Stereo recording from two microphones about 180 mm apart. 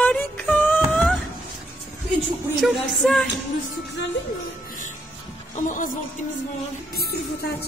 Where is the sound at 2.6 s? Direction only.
Centre (ahead or behind).